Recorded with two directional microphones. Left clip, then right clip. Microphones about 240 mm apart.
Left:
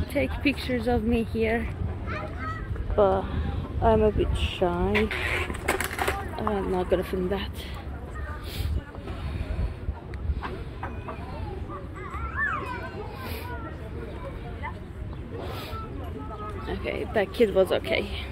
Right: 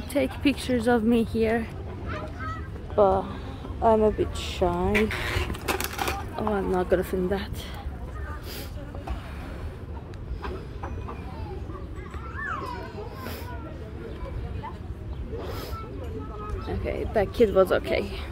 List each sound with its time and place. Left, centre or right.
0.1 s speech: centre
2.0 s a sound: left
3.0 s speech: centre
4.9 s speech: right
5.7 s a sound: right
6.3 s speech: centre
16.6 s speech: centre